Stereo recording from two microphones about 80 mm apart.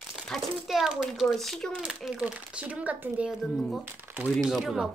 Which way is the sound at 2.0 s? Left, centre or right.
Centre.